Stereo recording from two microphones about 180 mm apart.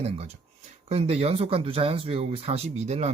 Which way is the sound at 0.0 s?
35° right (ahead or behind).